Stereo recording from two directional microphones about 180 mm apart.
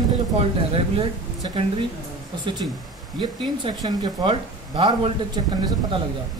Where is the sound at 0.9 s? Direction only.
30° right (ahead or behind).